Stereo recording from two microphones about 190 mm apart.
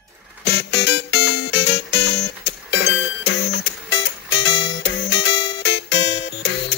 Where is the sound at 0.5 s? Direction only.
65° left (ahead or behind).